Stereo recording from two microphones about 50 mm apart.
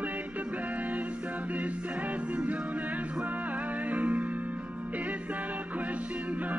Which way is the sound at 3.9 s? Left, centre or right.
Right.